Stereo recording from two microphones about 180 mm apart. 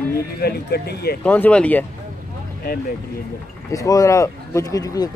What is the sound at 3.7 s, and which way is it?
Speech, 20° left (ahead or behind).